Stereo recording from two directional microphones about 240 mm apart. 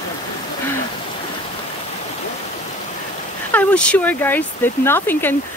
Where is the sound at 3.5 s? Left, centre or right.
Centre.